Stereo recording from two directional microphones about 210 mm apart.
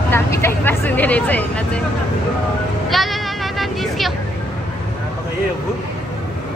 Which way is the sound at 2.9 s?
Centre (ahead or behind).